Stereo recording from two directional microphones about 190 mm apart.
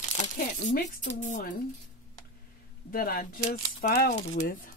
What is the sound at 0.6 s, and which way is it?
Speech, 40° left (ahead or behind).